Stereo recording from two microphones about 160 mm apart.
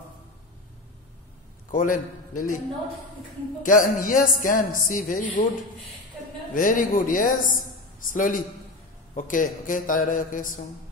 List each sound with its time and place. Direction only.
1.7 s a man's voice: 55° left (ahead or behind)
3.6 s a woman's voice: 55° left (ahead or behind)
6.5 s a man's voice: 55° left (ahead or behind)